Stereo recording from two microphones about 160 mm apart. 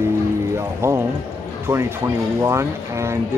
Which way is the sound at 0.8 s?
15° right (ahead or behind).